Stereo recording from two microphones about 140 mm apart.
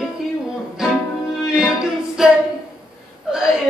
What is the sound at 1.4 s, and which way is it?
Music, 5° right (ahead or behind).